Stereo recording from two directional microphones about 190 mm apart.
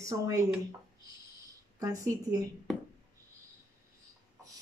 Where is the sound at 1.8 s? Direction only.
15° right (ahead or behind).